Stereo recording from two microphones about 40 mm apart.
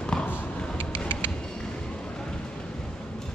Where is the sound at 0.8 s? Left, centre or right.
Left.